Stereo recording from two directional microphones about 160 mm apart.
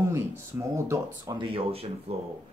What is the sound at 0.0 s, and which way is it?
Speech, 15° right (ahead or behind).